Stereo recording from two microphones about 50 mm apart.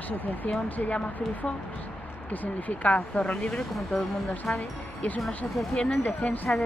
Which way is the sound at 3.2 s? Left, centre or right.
Centre.